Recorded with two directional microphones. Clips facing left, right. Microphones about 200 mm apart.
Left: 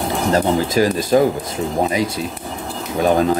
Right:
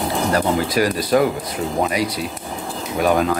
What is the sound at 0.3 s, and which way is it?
Speech, 25° left (ahead or behind).